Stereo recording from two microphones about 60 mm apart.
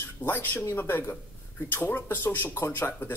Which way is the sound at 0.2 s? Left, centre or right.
Left.